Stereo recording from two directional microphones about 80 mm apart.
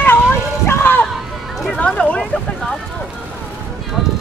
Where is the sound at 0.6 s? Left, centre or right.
Left.